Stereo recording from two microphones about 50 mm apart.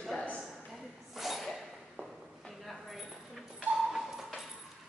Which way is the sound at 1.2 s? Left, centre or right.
Centre.